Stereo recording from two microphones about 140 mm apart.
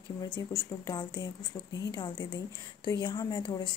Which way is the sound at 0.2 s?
25° left (ahead or behind).